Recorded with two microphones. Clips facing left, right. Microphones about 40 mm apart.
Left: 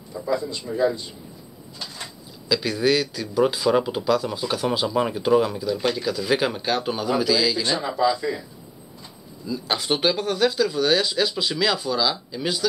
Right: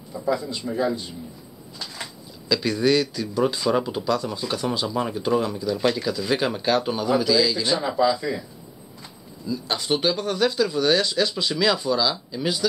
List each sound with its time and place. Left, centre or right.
0.1 s speech: centre
2.4 s speech: centre
9.7 s speech: centre
10.1 s speech: centre